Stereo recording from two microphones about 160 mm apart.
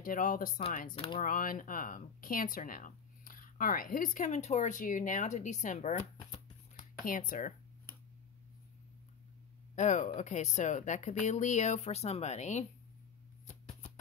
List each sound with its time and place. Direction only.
0.0 s speech: 60° left (ahead or behind)
0.9 s speech: 35° left (ahead or behind)
1.2 s speech: 60° left (ahead or behind)
9.8 s speech: 50° left (ahead or behind)